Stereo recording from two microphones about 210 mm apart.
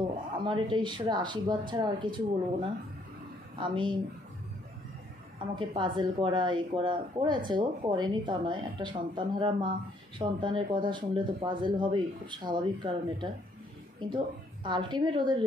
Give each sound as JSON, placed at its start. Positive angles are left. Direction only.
{"t": 0.4, "sound": "speech", "side_deg": -20}
{"t": 5.4, "sound": "a woman's voice", "side_deg": -25}